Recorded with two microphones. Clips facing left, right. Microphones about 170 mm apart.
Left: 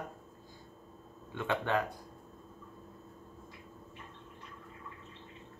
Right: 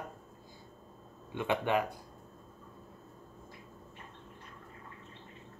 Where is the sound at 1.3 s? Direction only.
15° right (ahead or behind).